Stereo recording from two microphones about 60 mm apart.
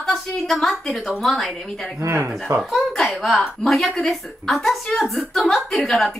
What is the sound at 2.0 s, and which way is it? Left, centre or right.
Speech, right.